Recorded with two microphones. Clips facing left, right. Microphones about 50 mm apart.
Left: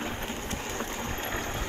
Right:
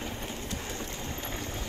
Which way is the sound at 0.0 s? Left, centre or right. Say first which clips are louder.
Left 3 dB; left.